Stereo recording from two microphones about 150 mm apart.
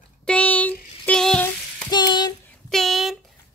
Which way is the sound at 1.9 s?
30° left (ahead or behind).